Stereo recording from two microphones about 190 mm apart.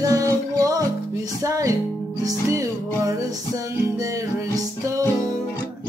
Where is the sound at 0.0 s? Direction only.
15° right (ahead or behind).